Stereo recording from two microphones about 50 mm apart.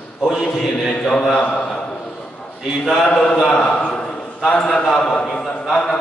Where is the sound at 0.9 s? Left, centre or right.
Centre.